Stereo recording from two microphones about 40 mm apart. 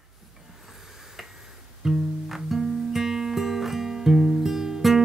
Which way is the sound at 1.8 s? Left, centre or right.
Centre.